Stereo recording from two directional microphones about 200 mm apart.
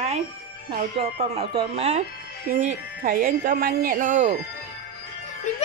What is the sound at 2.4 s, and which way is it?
Speech, 45° right (ahead or behind).